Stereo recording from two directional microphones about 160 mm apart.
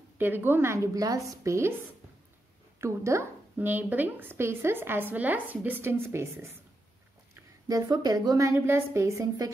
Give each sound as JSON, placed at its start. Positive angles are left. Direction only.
{"t": 0.2, "sound": "a woman's voice", "side_deg": -15}
{"t": 2.8, "sound": "a woman's voice", "side_deg": -20}
{"t": 7.6, "sound": "a woman's voice", "side_deg": -25}